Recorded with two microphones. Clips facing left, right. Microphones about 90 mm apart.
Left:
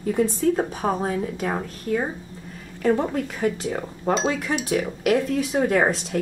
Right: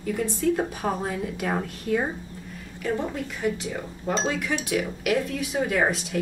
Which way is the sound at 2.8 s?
45° left (ahead or behind).